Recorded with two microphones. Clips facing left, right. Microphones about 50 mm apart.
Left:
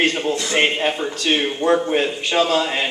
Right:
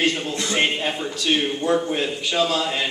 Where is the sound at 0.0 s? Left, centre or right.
Left.